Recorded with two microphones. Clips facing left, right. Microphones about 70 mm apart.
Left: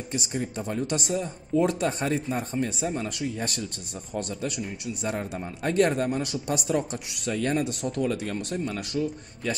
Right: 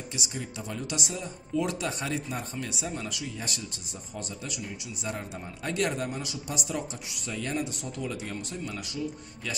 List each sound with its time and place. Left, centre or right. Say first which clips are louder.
0.1 s speech: left 8 dB; left